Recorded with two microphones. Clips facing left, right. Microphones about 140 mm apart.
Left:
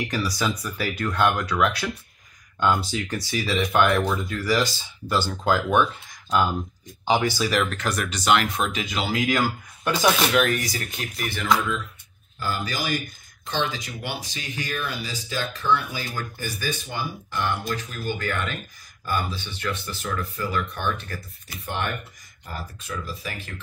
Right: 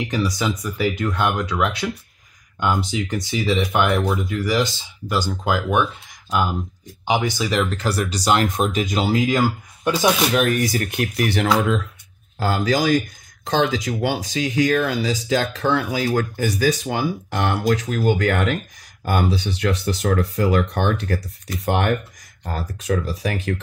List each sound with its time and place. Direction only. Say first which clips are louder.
0.1 s speech: right 3 dB; 20° right (ahead or behind)
7.2 s speech: right 2 dB; 20° right (ahead or behind); by 9.2 s 40° right (ahead or behind)
10.3 s speech: right 3 dB; 50° right (ahead or behind); by 11.8 s 75° right (ahead or behind)
12.4 s speech: right 9 dB; 90° right